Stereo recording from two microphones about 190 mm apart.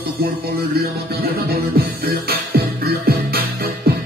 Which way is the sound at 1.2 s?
55° right (ahead or behind).